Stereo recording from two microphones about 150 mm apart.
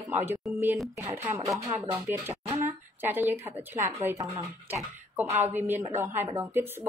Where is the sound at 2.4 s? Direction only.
45° right (ahead or behind).